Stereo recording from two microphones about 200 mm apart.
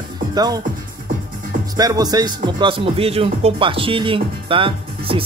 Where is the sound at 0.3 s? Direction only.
20° right (ahead or behind).